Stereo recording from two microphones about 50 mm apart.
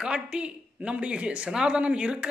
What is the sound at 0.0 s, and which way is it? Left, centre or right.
Speech, centre.